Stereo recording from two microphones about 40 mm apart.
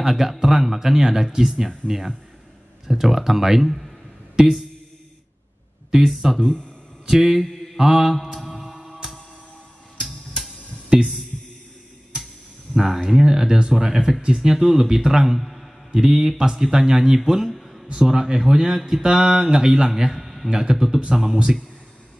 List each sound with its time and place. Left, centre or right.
0.0 s speech: centre
6.0 s speech: centre
7.3 s mantra: centre
7.7 s mantra: centre
10.0 s music: centre
12.7 s speech: centre
15.9 s speech: centre
17.2 s a sound: centre
17.9 s a man's voice: centre
20.4 s speech: centre